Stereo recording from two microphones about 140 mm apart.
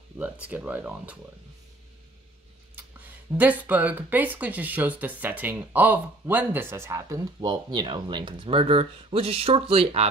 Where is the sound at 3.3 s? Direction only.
10° right (ahead or behind).